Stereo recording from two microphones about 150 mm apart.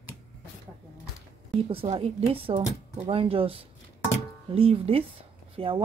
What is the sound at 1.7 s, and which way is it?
Speech, 40° right (ahead or behind).